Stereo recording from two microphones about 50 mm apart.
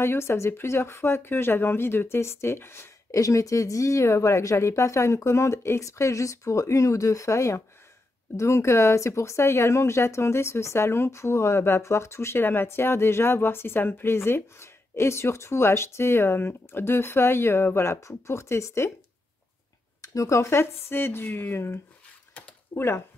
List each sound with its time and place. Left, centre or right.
0.0 s speech: left
3.1 s a woman's voice: left
8.4 s speech: left
20.2 s speech: left
22.8 s speech: left